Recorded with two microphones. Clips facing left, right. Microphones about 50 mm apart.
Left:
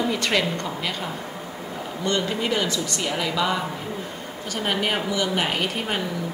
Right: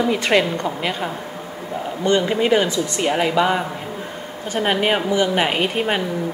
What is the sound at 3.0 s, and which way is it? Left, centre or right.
A woman's voice, right.